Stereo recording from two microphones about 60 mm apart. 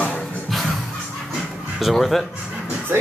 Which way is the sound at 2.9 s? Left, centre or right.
Right.